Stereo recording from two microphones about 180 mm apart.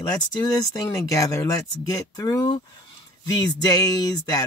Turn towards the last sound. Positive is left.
turn(degrees=20)  # may be behind; listen again after turning